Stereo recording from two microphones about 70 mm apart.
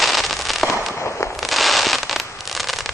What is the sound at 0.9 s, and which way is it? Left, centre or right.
Fireworks, left.